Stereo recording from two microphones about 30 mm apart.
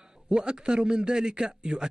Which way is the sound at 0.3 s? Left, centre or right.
Right.